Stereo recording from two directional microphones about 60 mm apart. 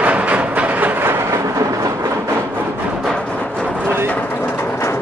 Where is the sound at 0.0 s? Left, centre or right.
Right.